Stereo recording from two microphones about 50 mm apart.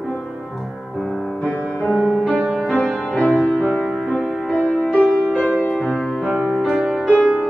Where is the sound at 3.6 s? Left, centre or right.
Centre.